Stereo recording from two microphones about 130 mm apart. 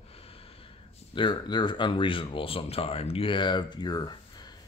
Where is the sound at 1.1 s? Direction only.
35° left (ahead or behind).